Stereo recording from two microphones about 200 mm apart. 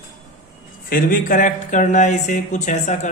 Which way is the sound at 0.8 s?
45° left (ahead or behind).